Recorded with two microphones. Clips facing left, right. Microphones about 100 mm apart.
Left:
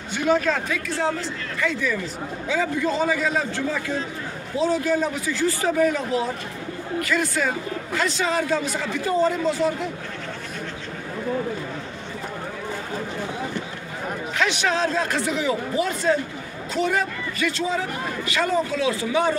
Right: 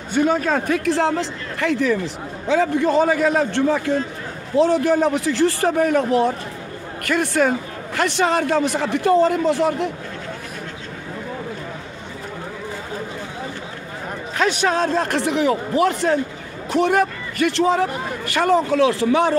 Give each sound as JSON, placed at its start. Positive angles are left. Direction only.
{"t": 0.1, "sound": "speech", "side_deg": -40}
{"t": 0.9, "sound": "a man's voice", "side_deg": -85}
{"t": 14.3, "sound": "a man's voice", "side_deg": -40}